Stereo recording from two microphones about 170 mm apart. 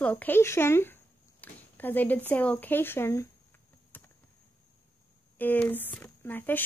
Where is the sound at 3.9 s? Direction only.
10° left (ahead or behind).